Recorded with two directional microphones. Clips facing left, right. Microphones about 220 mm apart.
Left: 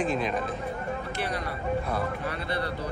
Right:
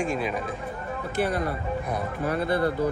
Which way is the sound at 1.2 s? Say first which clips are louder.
Right 6 dB; 50° right (ahead or behind).